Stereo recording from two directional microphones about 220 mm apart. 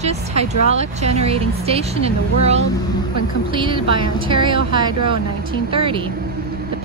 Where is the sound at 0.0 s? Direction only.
30° right (ahead or behind).